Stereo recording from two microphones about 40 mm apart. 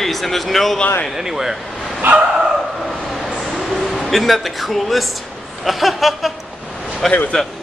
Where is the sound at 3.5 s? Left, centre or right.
Centre.